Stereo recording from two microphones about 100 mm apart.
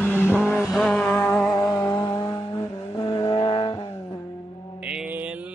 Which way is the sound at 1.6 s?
40° left (ahead or behind).